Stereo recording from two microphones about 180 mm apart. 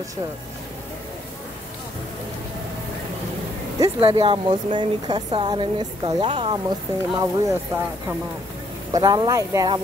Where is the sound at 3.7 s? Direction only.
30° right (ahead or behind).